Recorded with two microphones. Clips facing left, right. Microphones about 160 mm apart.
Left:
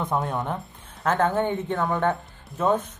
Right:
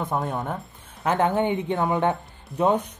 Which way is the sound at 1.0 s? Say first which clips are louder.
Right 1 dB; 20° right (ahead or behind).